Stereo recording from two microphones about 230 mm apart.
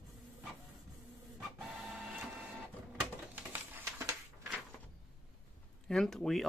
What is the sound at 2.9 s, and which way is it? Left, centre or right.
Typewriter, centre.